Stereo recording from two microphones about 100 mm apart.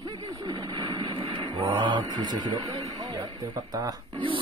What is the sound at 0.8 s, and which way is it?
Vehicle, 40° right (ahead or behind).